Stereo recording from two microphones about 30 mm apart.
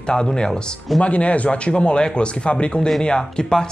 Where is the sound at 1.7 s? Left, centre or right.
Left.